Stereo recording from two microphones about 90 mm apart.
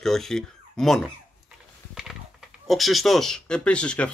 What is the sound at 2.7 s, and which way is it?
Speech, centre (ahead or behind).